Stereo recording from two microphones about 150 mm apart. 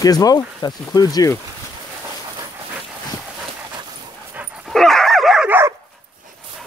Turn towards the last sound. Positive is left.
turn(degrees=-5)  # may be behind; listen again after turning